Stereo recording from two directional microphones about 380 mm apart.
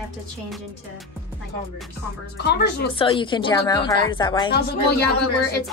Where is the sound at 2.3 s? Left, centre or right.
Left.